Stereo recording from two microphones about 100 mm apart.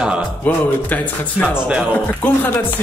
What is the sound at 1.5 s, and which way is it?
Speech, 10° right (ahead or behind).